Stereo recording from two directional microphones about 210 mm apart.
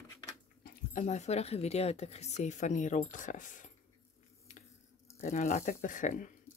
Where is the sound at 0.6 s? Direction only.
35° left (ahead or behind).